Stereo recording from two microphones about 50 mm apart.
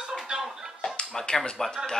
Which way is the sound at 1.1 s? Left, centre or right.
Centre.